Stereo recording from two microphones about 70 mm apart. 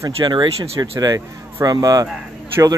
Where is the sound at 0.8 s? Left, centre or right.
Right.